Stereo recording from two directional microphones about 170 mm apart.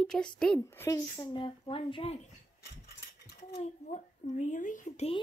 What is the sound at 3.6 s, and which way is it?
Speech, 40° left (ahead or behind).